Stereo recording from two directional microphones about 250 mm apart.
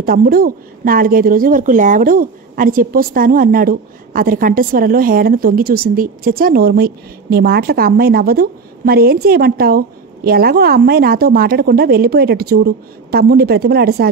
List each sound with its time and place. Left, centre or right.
0.0 s speech: right